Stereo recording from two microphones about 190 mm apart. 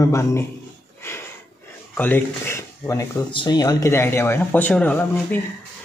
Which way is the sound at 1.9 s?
10° left (ahead or behind).